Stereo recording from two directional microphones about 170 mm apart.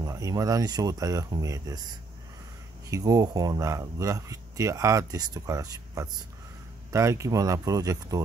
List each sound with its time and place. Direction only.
0.0 s speech: 20° right (ahead or behind)